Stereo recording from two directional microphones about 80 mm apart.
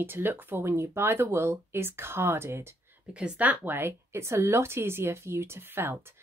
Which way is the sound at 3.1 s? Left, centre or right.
Centre.